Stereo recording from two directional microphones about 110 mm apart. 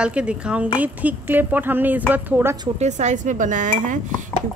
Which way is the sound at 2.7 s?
90° right.